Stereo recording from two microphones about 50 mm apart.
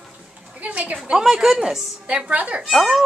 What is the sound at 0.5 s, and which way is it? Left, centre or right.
Speech, right.